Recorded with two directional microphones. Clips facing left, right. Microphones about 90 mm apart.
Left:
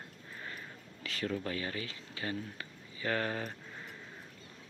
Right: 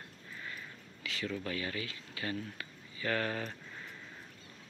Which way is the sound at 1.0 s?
40° left (ahead or behind).